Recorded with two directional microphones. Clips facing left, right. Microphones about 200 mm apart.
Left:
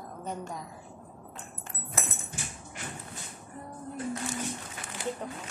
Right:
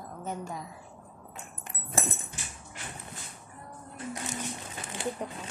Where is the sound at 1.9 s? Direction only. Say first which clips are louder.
Right 4 dB; 30° right (ahead or behind).